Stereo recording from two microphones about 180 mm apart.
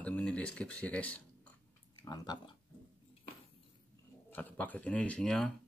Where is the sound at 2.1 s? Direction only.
20° left (ahead or behind).